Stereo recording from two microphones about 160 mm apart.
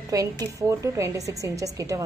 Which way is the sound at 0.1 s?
20° right (ahead or behind).